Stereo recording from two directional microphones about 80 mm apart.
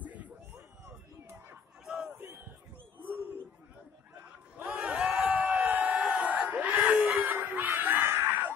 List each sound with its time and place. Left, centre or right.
0.0 s a sound: centre
1.9 s battle cry: centre
2.1 s battle cry: right
4.6 s crowd: centre
8.1 s screaming: right